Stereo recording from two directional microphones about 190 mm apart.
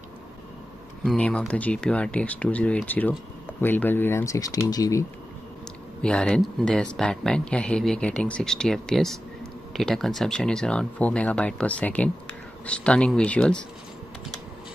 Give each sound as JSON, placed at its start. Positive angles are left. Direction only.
{"t": 1.0, "sound": "speech", "side_deg": 5}
{"t": 6.0, "sound": "speech", "side_deg": 5}